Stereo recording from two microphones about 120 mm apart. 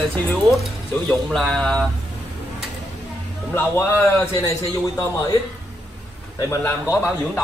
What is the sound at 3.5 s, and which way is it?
Speech, 20° left (ahead or behind).